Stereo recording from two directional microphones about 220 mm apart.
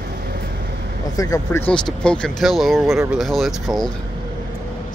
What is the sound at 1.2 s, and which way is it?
Speech, 15° left (ahead or behind).